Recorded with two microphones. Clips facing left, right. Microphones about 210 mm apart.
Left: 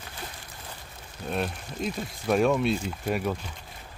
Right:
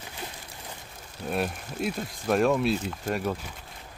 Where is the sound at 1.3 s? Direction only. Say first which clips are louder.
Right 1 dB; 5° right (ahead or behind).